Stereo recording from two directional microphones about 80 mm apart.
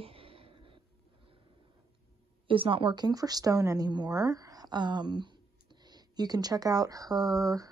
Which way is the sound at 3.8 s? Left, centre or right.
Right.